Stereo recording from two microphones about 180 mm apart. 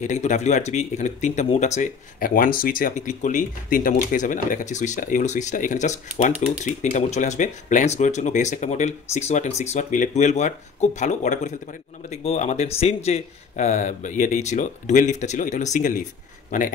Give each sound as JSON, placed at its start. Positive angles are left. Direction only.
{"t": 0.0, "sound": "speech", "side_deg": 40}